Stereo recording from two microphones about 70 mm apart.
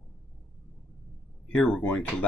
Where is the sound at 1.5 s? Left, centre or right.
Centre.